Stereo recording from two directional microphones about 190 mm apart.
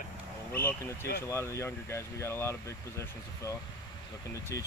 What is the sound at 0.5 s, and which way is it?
Speech, 10° left (ahead or behind).